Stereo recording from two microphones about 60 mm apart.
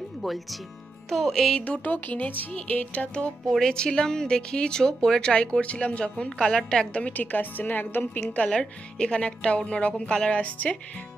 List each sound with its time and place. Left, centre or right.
0.2 s music: centre
1.6 s speech: left
3.4 s a woman's voice: centre
7.2 s speech: left
8.5 s a woman's voice: centre